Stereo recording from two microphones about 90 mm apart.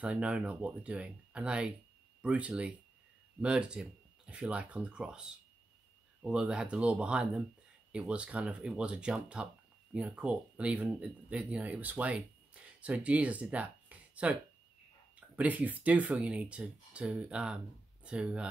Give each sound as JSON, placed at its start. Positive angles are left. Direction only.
{"t": 0.0, "sound": "speech", "side_deg": -10}
{"t": 6.2, "sound": "speech", "side_deg": -10}